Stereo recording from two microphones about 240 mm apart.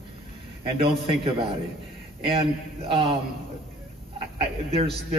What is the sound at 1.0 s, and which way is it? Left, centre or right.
A man's voice, right.